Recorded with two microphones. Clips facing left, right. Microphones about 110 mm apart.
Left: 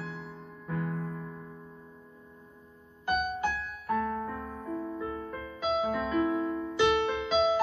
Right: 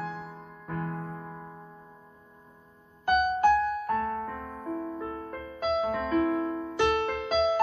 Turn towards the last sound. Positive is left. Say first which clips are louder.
# even
turn(degrees=-45)  # may be behind; listen again after turning